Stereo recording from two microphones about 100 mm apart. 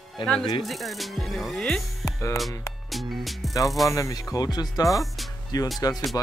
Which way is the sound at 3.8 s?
35° left (ahead or behind).